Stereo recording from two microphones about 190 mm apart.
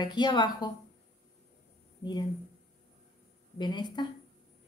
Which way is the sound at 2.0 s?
25° left (ahead or behind).